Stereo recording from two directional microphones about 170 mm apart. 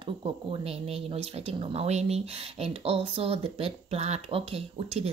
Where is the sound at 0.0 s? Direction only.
35° right (ahead or behind).